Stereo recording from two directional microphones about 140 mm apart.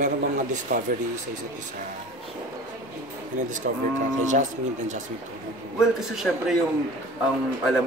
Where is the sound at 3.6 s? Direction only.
75° right (ahead or behind).